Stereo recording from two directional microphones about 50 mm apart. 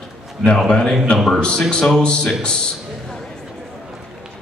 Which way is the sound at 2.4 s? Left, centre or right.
Centre.